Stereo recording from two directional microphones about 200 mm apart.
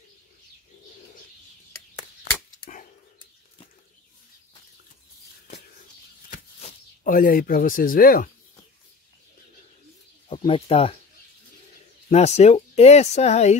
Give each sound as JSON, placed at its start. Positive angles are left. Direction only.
{"t": 6.3, "sound": "a sound", "side_deg": 40}
{"t": 10.3, "sound": "speech", "side_deg": 25}
{"t": 12.1, "sound": "speech", "side_deg": 35}